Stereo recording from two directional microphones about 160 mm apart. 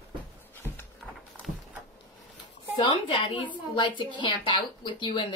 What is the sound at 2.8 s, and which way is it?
A woman's voice, 35° left (ahead or behind).